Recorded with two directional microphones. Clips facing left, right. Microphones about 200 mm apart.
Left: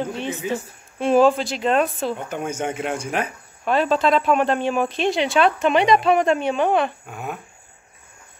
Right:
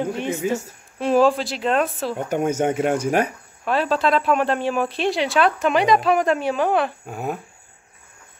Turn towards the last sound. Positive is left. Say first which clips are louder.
# right 4 dB
turn(degrees=-35)  # may be behind; listen again after turning